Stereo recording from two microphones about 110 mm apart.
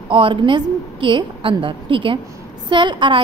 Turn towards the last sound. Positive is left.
turn(degrees=-45)  # may be behind; listen again after turning